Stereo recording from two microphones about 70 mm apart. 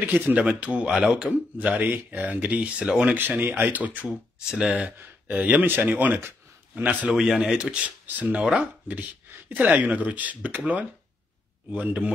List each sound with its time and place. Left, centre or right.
0.0 s speech: right; by 1.3 s centre
1.6 s speech: right
3.2 s speech: right; by 4.9 s centre
4.9 s speech: right
7.1 s speech: centre
9.5 s speech: right
11.7 s speech: right